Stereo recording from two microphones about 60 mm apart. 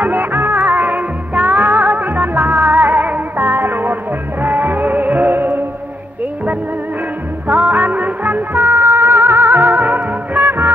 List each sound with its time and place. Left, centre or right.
0.0 s music: right
7.4 s music: right